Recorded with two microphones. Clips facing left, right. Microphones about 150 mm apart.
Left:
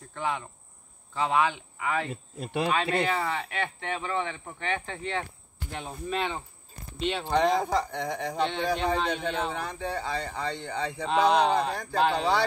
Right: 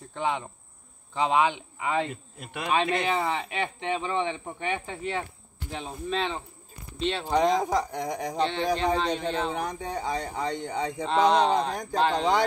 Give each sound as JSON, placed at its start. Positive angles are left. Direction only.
{"t": 0.1, "sound": "speech", "side_deg": -20}
{"t": 2.3, "sound": "speech", "side_deg": 30}
{"t": 3.1, "sound": "speech", "side_deg": -15}
{"t": 7.6, "sound": "speech", "side_deg": -10}
{"t": 8.4, "sound": "speech", "side_deg": 0}
{"t": 9.5, "sound": "speech", "side_deg": -15}
{"t": 11.1, "sound": "speech", "side_deg": 5}